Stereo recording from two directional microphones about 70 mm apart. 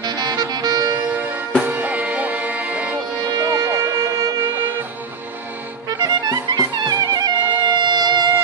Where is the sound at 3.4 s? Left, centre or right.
Right.